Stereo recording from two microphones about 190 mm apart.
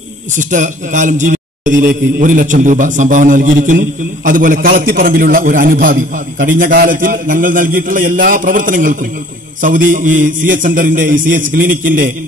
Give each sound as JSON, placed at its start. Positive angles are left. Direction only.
{"t": 0.4, "sound": "a man's voice", "side_deg": -40}